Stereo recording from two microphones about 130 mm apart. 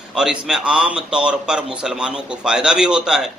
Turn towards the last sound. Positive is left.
turn(degrees=-5)  # may be behind; listen again after turning